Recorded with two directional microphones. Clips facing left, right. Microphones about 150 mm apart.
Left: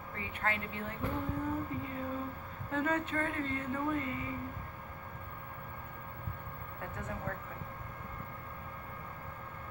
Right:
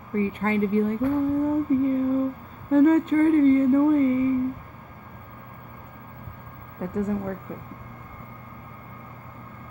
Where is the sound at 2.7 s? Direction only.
40° right (ahead or behind).